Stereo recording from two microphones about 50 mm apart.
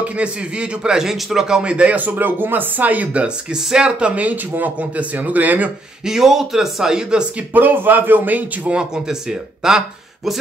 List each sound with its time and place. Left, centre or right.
0.0 s a man's voice: right
1.6 s speech: right
3.5 s speech: centre; by 5.7 s right
6.0 s a man's voice: centre
7.5 s speech: right
8.6 s a man's voice: centre